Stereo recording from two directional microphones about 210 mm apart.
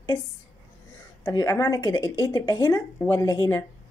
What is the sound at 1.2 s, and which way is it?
A woman's voice, 15° left (ahead or behind).